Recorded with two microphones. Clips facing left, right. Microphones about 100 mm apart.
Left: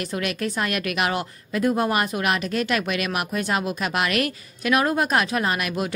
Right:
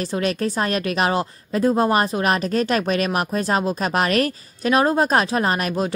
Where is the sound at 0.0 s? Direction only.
30° right (ahead or behind).